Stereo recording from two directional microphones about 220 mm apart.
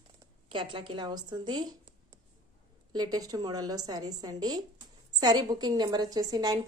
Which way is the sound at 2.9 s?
20° right (ahead or behind).